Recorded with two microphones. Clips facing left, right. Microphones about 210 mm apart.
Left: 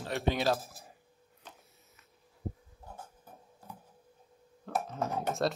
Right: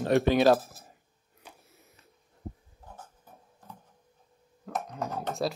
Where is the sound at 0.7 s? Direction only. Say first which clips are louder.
Even; centre (ahead or behind).